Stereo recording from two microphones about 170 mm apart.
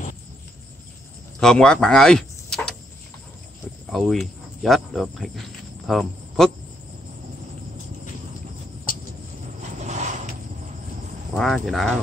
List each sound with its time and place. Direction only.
1.4 s speech: 5° left (ahead or behind)
3.9 s speech: centre (ahead or behind)
5.9 s cricket: centre (ahead or behind)
9.6 s a sound: 45° right (ahead or behind)
11.3 s speech: centre (ahead or behind)